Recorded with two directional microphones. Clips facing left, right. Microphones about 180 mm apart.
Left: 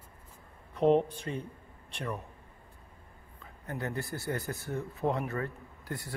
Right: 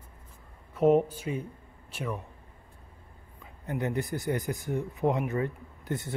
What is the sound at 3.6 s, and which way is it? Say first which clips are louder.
Speech: right 5 dB; 20° right (ahead or behind).